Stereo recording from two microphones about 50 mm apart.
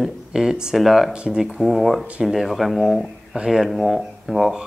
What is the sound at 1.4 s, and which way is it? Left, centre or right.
Speech, centre.